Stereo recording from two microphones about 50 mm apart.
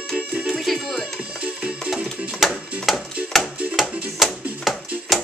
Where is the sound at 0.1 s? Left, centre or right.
Right.